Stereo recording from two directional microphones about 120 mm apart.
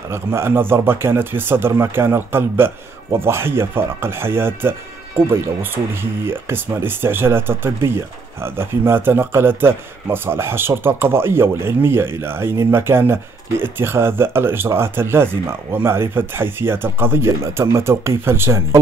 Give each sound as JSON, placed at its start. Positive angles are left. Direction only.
{"t": 0.1, "sound": "speech", "side_deg": -20}